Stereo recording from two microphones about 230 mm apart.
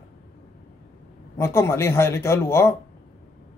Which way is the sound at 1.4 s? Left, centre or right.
Centre.